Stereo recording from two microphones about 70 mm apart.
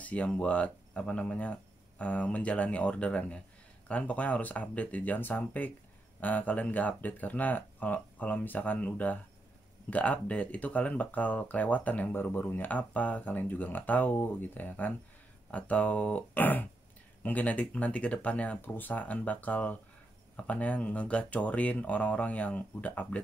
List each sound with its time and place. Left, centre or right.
0.0 s speech: centre